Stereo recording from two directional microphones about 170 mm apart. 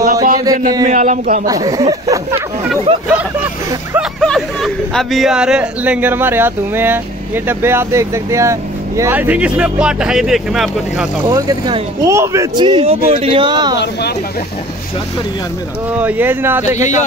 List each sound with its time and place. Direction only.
0.0 s a sound: 55° right (ahead or behind)
0.4 s speech: 20° right (ahead or behind)
0.8 s speech: 45° right (ahead or behind)
1.4 s speech: 20° right (ahead or behind)
2.9 s speech: 35° right (ahead or behind)
4.2 s speech: 5° left (ahead or behind)
11.2 s speech: 20° right (ahead or behind)
16.0 s speech: 10° right (ahead or behind)
16.6 s speech: 45° left (ahead or behind)